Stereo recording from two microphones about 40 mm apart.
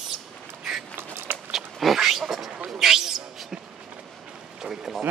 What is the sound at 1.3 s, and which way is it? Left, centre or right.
Walk, right.